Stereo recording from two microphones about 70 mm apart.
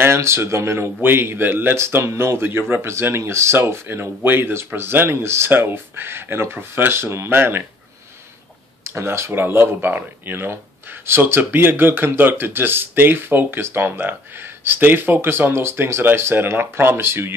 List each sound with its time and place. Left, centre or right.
0.0 s speech: right
8.8 s speech: right